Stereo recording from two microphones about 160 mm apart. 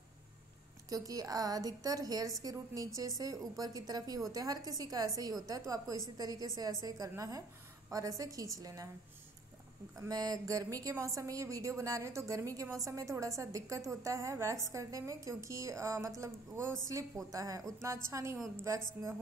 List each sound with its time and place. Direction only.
0.8 s a woman's voice: 20° right (ahead or behind)
9.9 s a woman's voice: 20° right (ahead or behind)